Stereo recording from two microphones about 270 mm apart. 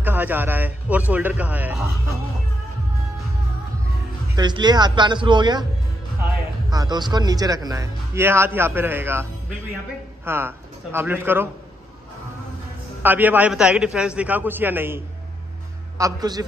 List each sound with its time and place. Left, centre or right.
0.0 s speech: centre
4.4 s speech: centre
6.7 s speech: centre
13.0 s speech: centre
16.0 s speech: centre